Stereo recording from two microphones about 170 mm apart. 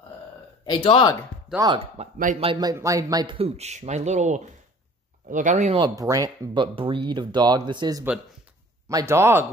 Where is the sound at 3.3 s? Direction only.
40° right (ahead or behind).